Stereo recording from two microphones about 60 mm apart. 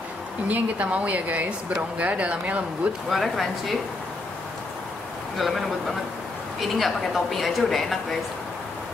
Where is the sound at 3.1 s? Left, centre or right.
Centre.